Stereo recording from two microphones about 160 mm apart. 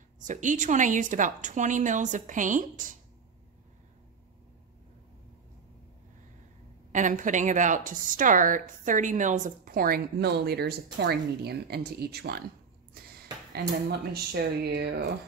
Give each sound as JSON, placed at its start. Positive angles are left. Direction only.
{"t": 0.2, "sound": "a woman's voice", "side_deg": -50}
{"t": 6.9, "sound": "a woman's voice", "side_deg": -50}
{"t": 13.0, "sound": "a sound", "side_deg": -70}
{"t": 13.8, "sound": "speech", "side_deg": -85}